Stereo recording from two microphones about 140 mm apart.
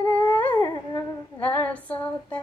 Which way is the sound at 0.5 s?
30° left (ahead or behind).